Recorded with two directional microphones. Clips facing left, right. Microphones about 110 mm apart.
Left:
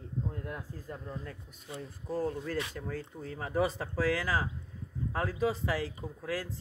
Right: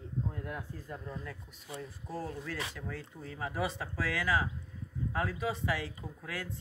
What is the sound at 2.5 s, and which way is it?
Speech, 40° left (ahead or behind).